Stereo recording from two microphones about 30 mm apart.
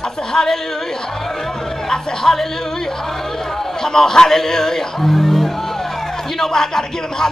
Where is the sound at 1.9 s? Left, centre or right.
Centre.